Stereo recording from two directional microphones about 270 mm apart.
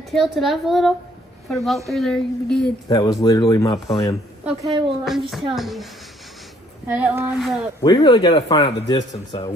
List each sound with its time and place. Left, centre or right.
0.1 s speech: centre
2.9 s a man's voice: centre
4.6 s a woman's voice: centre
5.0 s speech: centre
7.0 s speech: centre
7.8 s a man's voice: centre